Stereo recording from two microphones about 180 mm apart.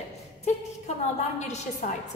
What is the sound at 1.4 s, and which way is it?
Speech, 40° left (ahead or behind).